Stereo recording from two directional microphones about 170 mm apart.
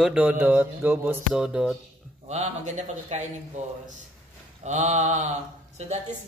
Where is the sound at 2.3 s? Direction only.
40° right (ahead or behind).